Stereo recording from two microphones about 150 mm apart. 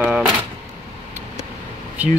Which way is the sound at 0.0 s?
5° right (ahead or behind).